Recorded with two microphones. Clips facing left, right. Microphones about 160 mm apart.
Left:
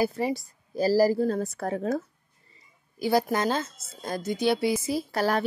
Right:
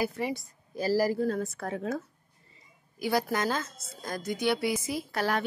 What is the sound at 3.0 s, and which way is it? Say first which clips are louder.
A woman's voice: left 4 dB; 30° left (ahead or behind).